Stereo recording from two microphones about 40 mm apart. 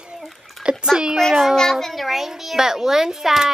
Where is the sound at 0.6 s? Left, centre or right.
Right.